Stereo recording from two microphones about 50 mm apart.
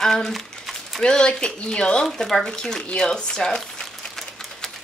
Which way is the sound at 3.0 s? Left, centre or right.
Centre.